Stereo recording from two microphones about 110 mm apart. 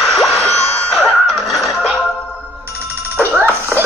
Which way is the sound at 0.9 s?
Centre (ahead or behind).